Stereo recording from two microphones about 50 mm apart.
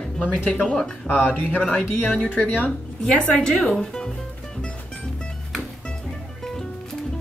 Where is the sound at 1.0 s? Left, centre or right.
Left.